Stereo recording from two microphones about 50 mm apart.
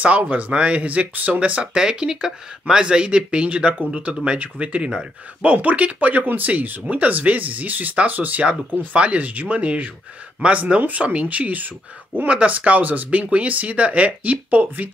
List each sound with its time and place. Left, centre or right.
0.0 s speech: right
8.5 s speech: right